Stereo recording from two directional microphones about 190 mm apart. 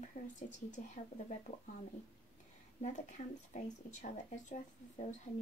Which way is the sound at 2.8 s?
40° left (ahead or behind).